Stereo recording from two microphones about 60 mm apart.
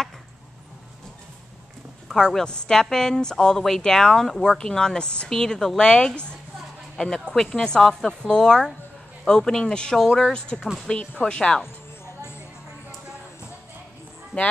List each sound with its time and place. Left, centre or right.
2.0 s speech: centre
11.0 s speech: centre